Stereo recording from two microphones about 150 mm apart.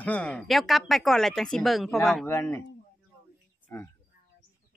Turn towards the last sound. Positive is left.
turn(degrees=15)  # may be behind; listen again after turning